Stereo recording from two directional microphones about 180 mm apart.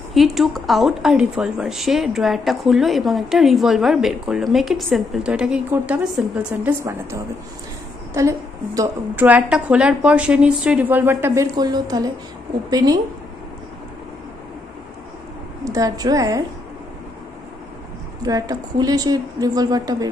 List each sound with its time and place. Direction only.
0.1 s a woman's voice: centre (ahead or behind); by 13.0 s 20° right (ahead or behind)
15.6 s a woman's voice: 20° right (ahead or behind)
18.2 s a woman's voice: 20° right (ahead or behind)